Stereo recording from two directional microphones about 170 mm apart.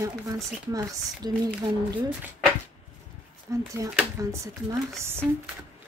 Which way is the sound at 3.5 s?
20° right (ahead or behind).